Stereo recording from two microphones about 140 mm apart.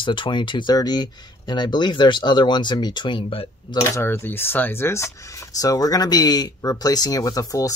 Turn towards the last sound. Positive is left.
turn(degrees=25)  # may be behind; listen again after turning